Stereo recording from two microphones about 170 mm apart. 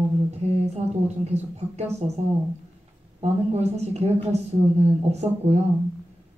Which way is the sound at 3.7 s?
40° right (ahead or behind).